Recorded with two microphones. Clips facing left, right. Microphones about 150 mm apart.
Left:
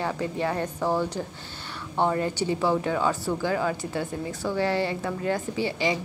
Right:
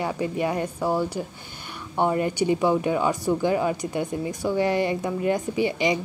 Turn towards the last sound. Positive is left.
turn(degrees=-15)  # may be behind; listen again after turning